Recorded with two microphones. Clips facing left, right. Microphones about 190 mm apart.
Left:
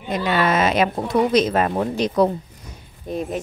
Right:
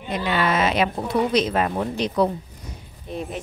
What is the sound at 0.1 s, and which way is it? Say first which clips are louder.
A child's voice: left 3 dB; 45° left (ahead or behind).